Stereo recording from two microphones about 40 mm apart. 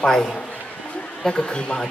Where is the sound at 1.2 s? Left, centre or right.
Left.